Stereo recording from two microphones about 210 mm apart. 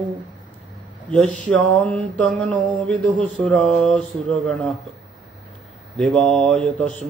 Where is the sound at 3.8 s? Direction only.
5° left (ahead or behind).